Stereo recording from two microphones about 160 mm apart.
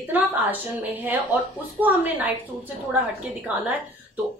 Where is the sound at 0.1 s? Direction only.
10° right (ahead or behind).